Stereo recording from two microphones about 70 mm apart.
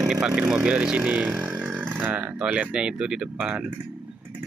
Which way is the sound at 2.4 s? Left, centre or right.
Centre.